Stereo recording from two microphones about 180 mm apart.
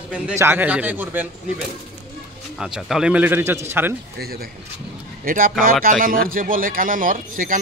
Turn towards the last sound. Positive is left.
turn(degrees=-50)  # may be behind; listen again after turning